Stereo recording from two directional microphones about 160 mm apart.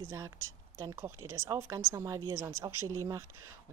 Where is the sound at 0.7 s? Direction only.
15° right (ahead or behind).